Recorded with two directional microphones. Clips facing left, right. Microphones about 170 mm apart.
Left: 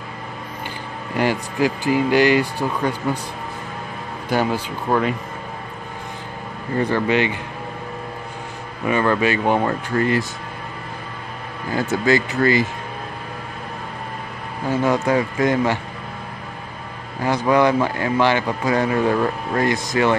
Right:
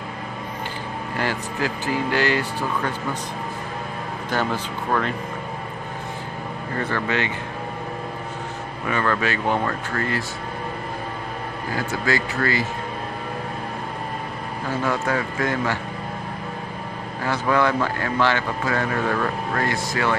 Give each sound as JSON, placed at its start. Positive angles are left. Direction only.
{"t": 1.1, "sound": "a man's voice", "side_deg": 15}
{"t": 4.3, "sound": "a man's voice", "side_deg": 10}
{"t": 6.8, "sound": "a man's voice", "side_deg": 15}
{"t": 8.8, "sound": "speech", "side_deg": 20}
{"t": 11.9, "sound": "speech", "side_deg": 20}
{"t": 14.9, "sound": "speech", "side_deg": 20}
{"t": 17.2, "sound": "a man's voice", "side_deg": 15}